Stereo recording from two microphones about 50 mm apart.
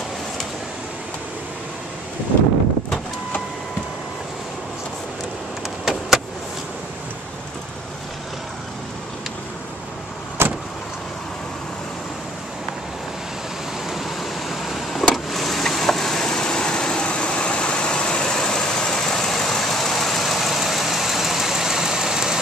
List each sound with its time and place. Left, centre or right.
5.9 s vehicle: centre
10.4 s vehicle: right
13.8 s vehicle: centre